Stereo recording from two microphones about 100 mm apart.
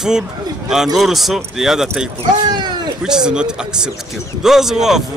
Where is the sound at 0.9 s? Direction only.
Centre (ahead or behind).